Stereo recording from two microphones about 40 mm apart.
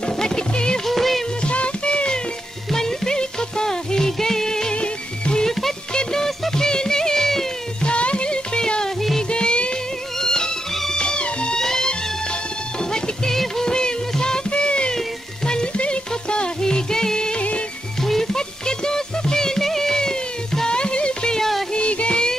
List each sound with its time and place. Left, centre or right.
0.0 s music: centre
0.8 s music: centre
1.4 s music: left
2.7 s music: centre
4.7 s music: left
5.4 s music: centre
7.8 s music: left
17.4 s music: left
18.0 s music: centre; by 21.4 s left
21.4 s music: centre
21.7 s music: left